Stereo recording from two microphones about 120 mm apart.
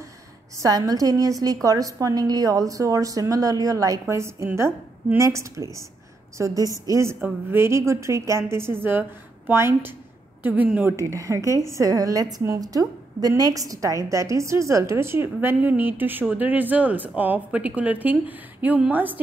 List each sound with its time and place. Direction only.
0.6 s a woman's voice: 30° right (ahead or behind); by 19.1 s 15° right (ahead or behind)